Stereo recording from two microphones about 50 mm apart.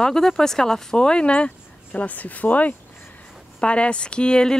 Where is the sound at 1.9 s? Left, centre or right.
Left.